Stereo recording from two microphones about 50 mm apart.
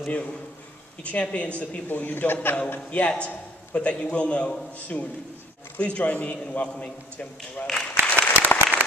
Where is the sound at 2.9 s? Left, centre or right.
Left.